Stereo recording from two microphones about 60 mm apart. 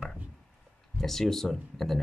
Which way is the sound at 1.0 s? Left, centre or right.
Centre.